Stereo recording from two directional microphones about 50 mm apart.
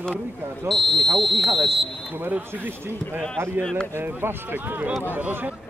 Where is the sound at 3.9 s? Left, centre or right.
Right.